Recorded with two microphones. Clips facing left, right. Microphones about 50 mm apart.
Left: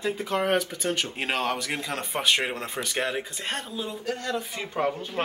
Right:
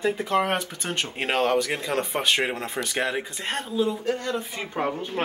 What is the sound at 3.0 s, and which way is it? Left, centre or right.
Speech, centre.